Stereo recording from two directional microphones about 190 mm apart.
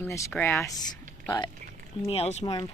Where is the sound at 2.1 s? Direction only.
35° left (ahead or behind).